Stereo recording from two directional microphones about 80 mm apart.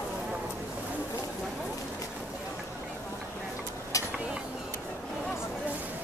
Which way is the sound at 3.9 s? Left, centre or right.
Left.